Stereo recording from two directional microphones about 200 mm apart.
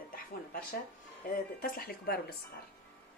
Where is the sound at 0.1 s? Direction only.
45° left (ahead or behind).